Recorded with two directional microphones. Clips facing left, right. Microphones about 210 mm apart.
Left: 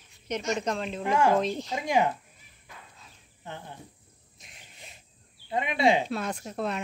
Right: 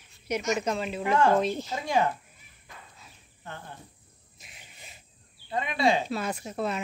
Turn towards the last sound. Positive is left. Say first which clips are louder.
# right 1 dB
turn(degrees=0)  # may be behind; listen again after turning